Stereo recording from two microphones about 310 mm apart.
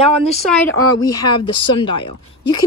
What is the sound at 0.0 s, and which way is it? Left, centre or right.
A woman's voice, centre.